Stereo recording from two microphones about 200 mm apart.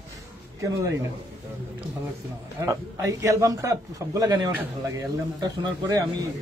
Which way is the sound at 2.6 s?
15° right (ahead or behind).